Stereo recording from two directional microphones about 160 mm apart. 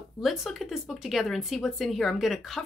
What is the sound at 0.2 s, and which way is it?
Speech, centre (ahead or behind).